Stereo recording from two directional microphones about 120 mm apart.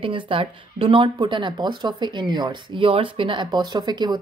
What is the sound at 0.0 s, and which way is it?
Speech, 45° right (ahead or behind).